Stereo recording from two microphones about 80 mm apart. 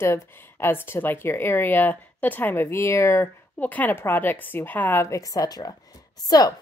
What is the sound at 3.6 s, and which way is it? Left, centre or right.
A woman's voice, left.